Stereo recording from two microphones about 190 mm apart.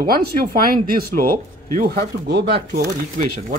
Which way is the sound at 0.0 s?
50° right (ahead or behind).